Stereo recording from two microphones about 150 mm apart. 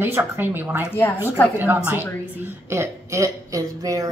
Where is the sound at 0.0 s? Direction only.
15° right (ahead or behind).